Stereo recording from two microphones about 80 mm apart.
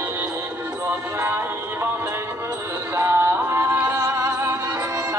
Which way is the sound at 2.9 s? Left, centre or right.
Right.